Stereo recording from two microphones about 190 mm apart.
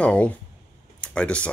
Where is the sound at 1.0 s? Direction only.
5° left (ahead or behind).